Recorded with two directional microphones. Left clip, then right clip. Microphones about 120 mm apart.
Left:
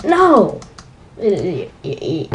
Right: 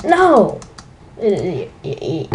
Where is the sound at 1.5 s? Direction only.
Centre (ahead or behind).